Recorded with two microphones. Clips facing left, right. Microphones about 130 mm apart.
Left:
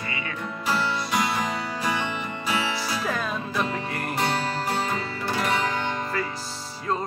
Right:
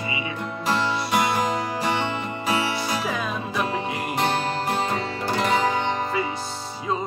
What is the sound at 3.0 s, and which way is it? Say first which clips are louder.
Music: right 1 dB; 10° right (ahead or behind).